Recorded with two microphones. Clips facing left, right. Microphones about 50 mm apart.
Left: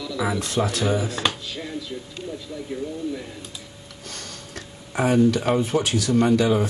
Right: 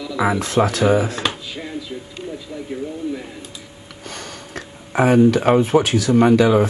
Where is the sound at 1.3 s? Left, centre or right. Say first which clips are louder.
Right 2 dB; centre.